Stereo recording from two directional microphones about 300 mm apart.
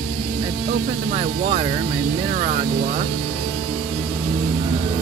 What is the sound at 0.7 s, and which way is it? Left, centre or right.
Speech, centre.